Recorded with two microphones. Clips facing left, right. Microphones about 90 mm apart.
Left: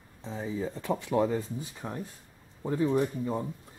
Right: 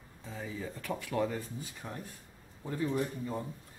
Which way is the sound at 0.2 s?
25° left (ahead or behind).